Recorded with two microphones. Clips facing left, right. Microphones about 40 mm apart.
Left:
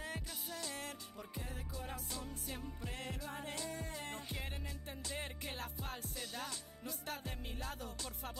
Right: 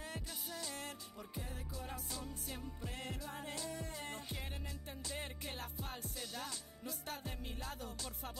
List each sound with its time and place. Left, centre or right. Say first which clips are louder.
0.5 s music: left 1 dB; centre
1.8 s music: even; centre